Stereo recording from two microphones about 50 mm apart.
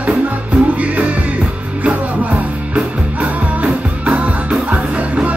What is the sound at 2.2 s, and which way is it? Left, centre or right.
Music, right.